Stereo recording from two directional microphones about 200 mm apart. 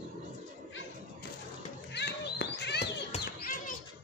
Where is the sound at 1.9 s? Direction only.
60° left (ahead or behind).